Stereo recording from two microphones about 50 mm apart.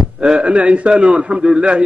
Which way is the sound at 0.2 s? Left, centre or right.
Right.